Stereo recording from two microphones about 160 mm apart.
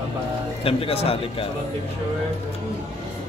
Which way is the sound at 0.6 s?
35° left (ahead or behind).